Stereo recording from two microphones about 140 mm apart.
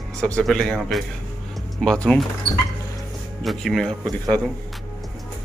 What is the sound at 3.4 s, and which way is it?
Speech, centre (ahead or behind).